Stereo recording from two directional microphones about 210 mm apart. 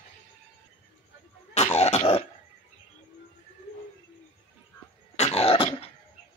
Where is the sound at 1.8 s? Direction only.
30° left (ahead or behind).